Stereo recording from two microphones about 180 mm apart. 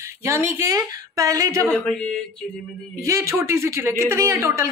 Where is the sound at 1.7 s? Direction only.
5° left (ahead or behind).